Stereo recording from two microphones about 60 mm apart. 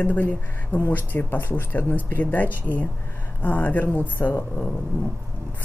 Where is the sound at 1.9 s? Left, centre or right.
Left.